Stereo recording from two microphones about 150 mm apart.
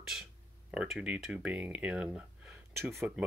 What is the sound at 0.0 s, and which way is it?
Speech, centre (ahead or behind).